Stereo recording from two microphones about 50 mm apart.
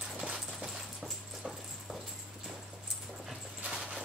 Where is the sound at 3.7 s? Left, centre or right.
Centre.